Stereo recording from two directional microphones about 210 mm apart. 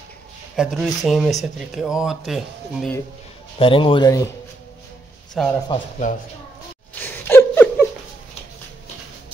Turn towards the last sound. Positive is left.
turn(degrees=10)  # may be behind; listen again after turning